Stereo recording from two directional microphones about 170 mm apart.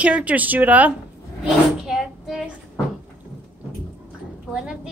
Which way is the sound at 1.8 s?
Centre (ahead or behind).